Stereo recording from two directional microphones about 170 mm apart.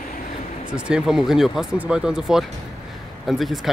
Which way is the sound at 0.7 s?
5° right (ahead or behind).